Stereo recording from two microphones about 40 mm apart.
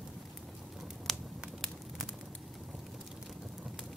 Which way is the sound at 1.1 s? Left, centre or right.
Centre.